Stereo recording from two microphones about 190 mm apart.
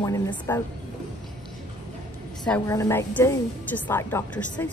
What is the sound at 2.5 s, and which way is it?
Speech, 15° left (ahead or behind).